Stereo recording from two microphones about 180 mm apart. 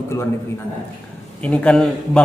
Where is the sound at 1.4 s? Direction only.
5° left (ahead or behind).